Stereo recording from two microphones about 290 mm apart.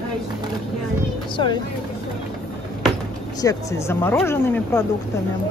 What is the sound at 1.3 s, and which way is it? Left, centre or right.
Speech, centre.